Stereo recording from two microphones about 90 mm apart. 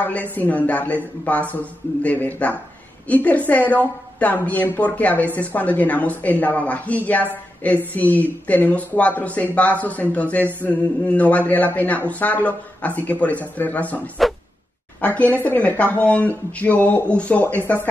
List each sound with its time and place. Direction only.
0.0 s a woman's voice: 20° left (ahead or behind)